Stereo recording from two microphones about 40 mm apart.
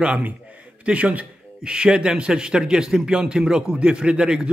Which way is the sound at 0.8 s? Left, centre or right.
Right.